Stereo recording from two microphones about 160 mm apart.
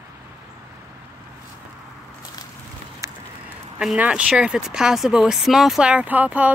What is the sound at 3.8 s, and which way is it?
Speech, 5° right (ahead or behind).